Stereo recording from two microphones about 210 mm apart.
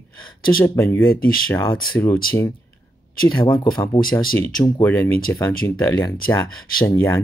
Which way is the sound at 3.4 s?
20° left (ahead or behind).